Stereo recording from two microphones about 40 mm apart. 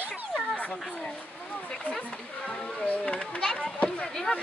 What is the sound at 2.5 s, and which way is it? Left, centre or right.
Speech, centre.